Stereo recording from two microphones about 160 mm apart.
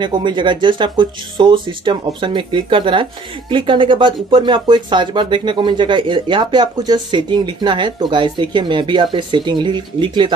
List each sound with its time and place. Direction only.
0.0 s speech: 30° right (ahead or behind)